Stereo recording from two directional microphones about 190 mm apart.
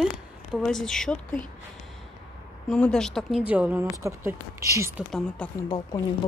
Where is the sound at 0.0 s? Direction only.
Centre (ahead or behind).